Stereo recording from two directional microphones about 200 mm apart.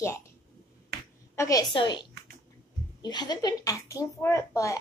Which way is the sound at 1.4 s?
15° left (ahead or behind).